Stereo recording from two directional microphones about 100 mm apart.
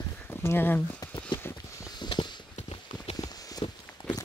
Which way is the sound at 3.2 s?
40° left (ahead or behind).